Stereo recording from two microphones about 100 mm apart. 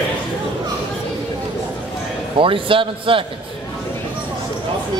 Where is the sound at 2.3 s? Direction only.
60° right (ahead or behind).